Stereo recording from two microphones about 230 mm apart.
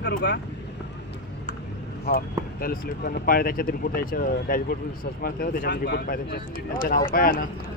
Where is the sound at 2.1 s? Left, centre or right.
Left.